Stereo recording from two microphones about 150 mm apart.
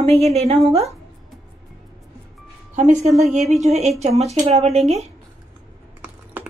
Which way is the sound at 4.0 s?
45° right (ahead or behind).